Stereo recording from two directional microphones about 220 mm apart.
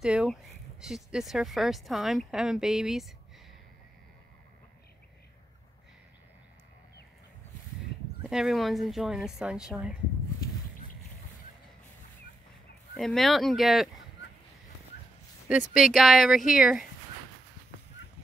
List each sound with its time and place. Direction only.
0.0 s speech: 5° right (ahead or behind)
8.3 s speech: centre (ahead or behind)
12.9 s speech: centre (ahead or behind)
15.4 s speech: 5° right (ahead or behind)